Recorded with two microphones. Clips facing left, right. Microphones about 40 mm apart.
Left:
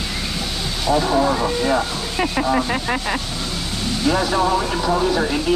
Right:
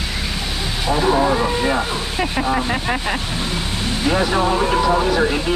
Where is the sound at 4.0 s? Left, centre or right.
Right.